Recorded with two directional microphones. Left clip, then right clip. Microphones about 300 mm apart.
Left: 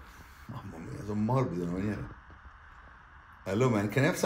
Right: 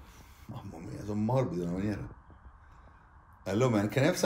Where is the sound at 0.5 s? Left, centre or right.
Centre.